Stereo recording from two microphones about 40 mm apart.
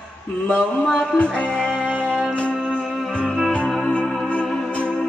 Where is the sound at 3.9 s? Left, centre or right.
Left.